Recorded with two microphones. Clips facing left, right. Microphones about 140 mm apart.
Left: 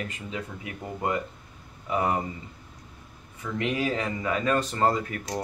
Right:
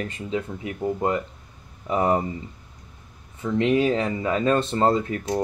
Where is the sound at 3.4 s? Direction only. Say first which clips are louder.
Right 8 dB; 25° right (ahead or behind).